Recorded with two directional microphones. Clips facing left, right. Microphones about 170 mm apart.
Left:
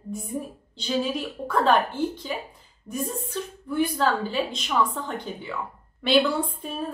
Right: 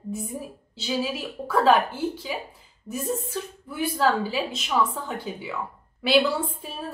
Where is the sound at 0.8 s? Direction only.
5° right (ahead or behind).